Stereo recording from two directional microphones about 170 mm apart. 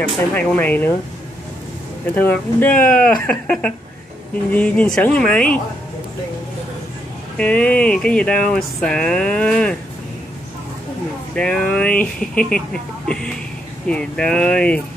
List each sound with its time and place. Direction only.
0.3 s speech: 10° left (ahead or behind)
2.1 s speech: 10° left (ahead or behind)
7.3 s speech: 5° left (ahead or behind)
11.3 s speech: 5° left (ahead or behind)